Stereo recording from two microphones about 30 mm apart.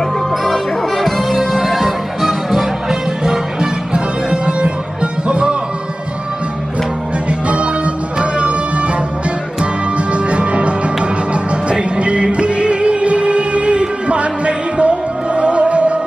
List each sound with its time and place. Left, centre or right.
0.5 s music: centre
3.9 s music: right
7.2 s music: right
9.9 s music: right
11.7 s music: right